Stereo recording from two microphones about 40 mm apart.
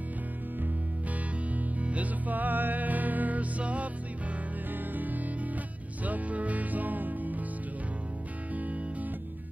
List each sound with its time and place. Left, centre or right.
1.5 s music: right
4.9 s music: right